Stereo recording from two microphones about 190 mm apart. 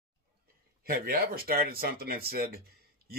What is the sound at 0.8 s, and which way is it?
Speech, 50° right (ahead or behind).